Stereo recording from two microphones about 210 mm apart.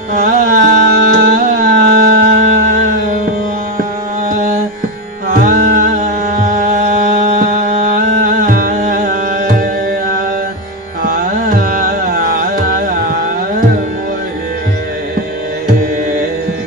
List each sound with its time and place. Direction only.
0.1 s music: 45° right (ahead or behind)
5.3 s music: 45° right (ahead or behind)
11.1 s carnatic music: 45° right (ahead or behind)